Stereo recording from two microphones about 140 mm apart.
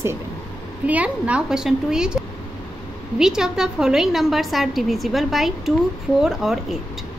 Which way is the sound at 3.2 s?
5° right (ahead or behind).